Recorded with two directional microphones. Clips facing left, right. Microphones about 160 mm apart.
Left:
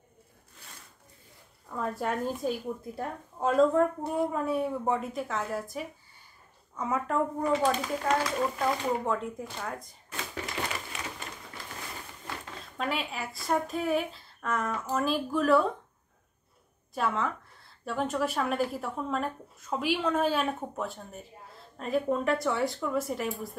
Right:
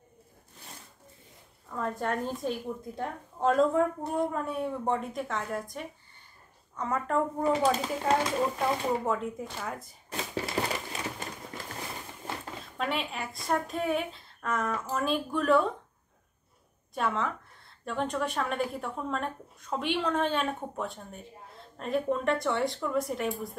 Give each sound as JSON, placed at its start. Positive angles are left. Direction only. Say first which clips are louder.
{"t": 1.8, "sound": "a woman's voice", "louder": "even", "side_deg": 5}
{"t": 7.7, "sound": "speech", "louder": "right 1 dB", "side_deg": -30}
{"t": 9.0, "sound": "a woman's voice", "louder": "right 1 dB", "side_deg": 0}
{"t": 10.1, "sound": "crumpling", "louder": "right 4 dB", "side_deg": -35}
{"t": 12.7, "sound": "a woman's voice", "louder": "even", "side_deg": 0}
{"t": 16.9, "sound": "a woman's voice", "louder": "left 1 dB", "side_deg": 0}